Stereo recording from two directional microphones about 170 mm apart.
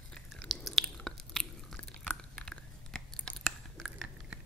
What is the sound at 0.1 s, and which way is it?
Chewing, centre (ahead or behind).